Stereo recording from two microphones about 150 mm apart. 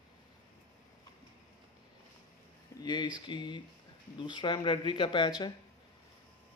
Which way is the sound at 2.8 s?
30° left (ahead or behind).